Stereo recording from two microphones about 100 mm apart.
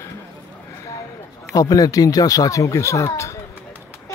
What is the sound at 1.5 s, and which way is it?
Speech, 40° left (ahead or behind).